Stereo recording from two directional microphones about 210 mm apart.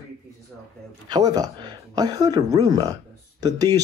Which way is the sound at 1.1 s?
15° right (ahead or behind).